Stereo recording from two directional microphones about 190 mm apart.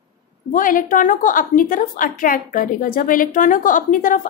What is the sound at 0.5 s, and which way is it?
A woman's voice, 45° left (ahead or behind).